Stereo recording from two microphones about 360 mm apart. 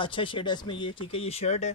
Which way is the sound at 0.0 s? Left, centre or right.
Centre.